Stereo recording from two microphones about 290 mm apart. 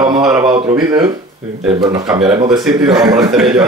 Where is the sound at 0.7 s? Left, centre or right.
Centre.